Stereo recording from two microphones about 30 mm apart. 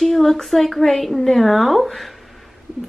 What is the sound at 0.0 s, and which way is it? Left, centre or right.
A woman's voice, centre.